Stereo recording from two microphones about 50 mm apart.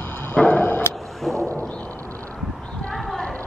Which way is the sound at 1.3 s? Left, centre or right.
Right.